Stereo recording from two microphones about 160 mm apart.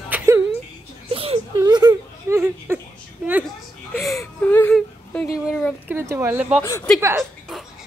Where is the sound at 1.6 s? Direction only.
25° right (ahead or behind).